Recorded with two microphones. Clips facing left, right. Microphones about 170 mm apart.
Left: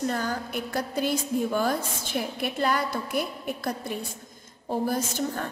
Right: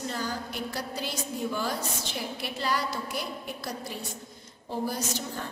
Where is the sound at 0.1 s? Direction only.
55° left (ahead or behind).